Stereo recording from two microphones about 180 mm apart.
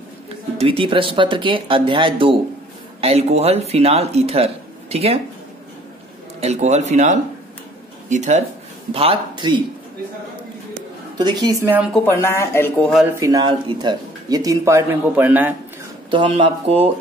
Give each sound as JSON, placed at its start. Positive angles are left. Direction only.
{"t": 0.6, "sound": "speech", "side_deg": -30}
{"t": 6.4, "sound": "speech", "side_deg": -40}
{"t": 11.1, "sound": "speech", "side_deg": -25}
{"t": 11.9, "sound": "speech", "side_deg": 10}
{"t": 13.2, "sound": "speech", "side_deg": -20}
{"t": 16.1, "sound": "speech", "side_deg": -30}